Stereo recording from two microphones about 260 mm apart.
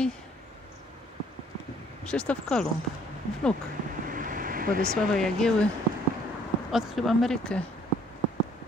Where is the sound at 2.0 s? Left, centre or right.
Centre.